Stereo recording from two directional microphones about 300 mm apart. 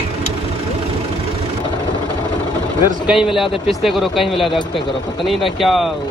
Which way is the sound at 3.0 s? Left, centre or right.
Centre.